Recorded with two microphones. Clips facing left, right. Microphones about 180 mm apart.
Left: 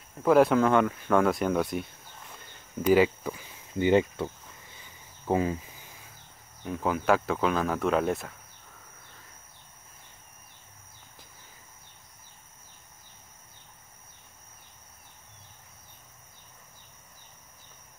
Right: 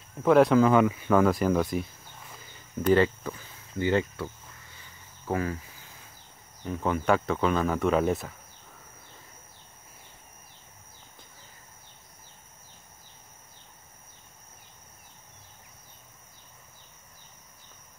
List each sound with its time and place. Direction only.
0.2 s speech: centre (ahead or behind)
2.8 s speech: 10° left (ahead or behind)
5.2 s cricket: 20° left (ahead or behind)
6.6 s speech: 5° left (ahead or behind)